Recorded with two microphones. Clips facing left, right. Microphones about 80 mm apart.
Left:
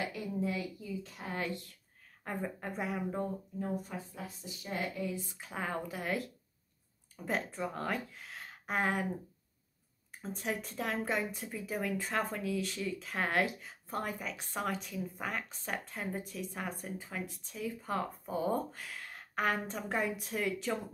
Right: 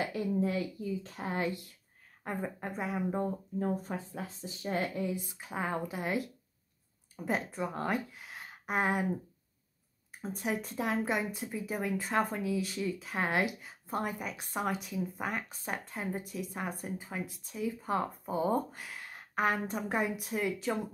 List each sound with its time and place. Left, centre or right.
0.0 s a sound: right
1.4 s speech: centre
3.5 s speech: right
5.1 s speech: centre
7.2 s speech: centre
10.2 s speech: centre